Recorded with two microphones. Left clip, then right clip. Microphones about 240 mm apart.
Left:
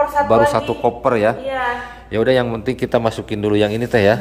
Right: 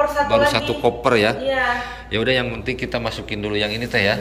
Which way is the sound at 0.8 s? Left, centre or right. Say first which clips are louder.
Left 1 dB; centre.